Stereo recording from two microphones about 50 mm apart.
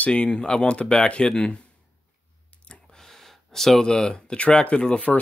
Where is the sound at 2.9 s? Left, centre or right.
Centre.